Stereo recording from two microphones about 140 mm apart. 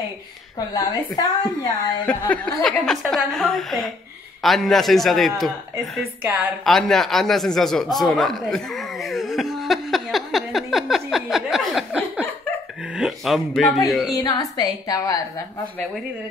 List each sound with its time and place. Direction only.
0.7 s a woman's voice: 30° left (ahead or behind)
2.0 s speech: 10° left (ahead or behind)
6.2 s a woman's voice: 10° right (ahead or behind)
6.6 s a sound: centre (ahead or behind)
12.9 s speech: centre (ahead or behind)
14.1 s a woman's voice: 25° left (ahead or behind)